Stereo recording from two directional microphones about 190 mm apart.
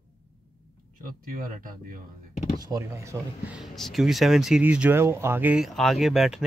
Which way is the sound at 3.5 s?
Centre (ahead or behind).